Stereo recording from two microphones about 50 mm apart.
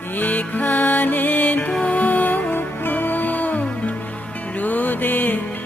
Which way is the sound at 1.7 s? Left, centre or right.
Left.